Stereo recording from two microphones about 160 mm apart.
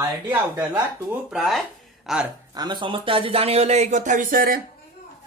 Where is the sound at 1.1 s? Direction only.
5° right (ahead or behind).